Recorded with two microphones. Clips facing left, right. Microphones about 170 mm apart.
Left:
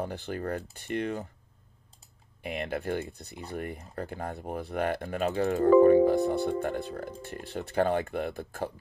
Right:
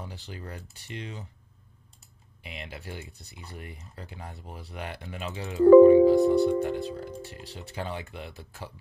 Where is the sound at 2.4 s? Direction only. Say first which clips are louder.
Left 9 dB; 55° left (ahead or behind).